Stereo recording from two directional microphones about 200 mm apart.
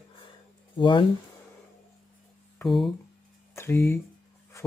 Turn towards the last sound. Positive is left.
turn(degrees=10)  # may be behind; listen again after turning